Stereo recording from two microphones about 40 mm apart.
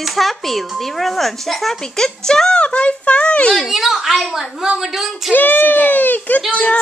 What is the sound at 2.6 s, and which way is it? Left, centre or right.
Speech, left.